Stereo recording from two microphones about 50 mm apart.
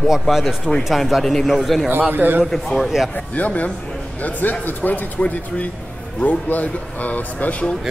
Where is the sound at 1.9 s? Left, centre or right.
Right.